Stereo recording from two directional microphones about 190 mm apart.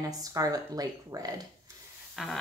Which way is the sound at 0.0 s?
20° right (ahead or behind).